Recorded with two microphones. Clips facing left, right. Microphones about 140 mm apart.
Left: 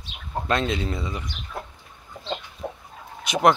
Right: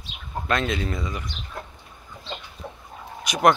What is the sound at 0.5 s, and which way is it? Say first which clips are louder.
Speech: even; 30° left (ahead or behind).